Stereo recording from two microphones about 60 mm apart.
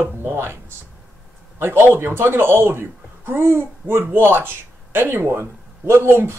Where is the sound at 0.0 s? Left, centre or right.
Right.